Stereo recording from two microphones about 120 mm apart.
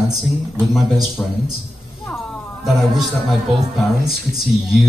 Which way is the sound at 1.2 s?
15° left (ahead or behind).